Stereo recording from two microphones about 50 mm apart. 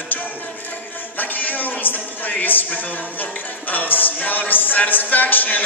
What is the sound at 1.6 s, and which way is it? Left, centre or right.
Speech, left.